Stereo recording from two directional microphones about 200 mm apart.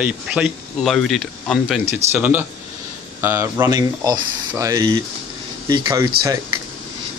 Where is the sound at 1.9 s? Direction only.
10° right (ahead or behind).